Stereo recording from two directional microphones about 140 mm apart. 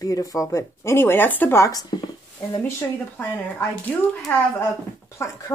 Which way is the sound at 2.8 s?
15° left (ahead or behind).